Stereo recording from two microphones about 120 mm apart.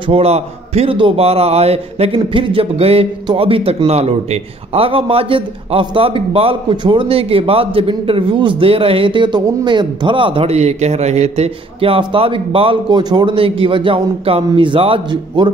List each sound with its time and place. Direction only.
0.0 s a man's voice: 55° right (ahead or behind)